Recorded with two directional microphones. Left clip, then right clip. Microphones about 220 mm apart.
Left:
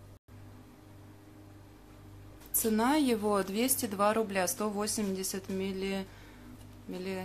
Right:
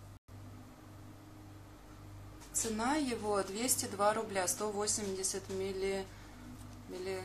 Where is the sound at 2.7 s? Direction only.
50° left (ahead or behind).